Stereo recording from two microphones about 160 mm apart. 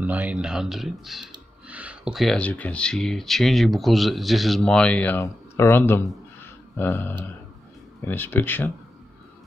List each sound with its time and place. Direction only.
0.0 s speech: 10° right (ahead or behind); by 8.7 s 10° left (ahead or behind)